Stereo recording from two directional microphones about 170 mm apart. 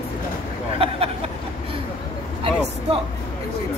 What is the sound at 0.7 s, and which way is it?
Speech, 35° right (ahead or behind).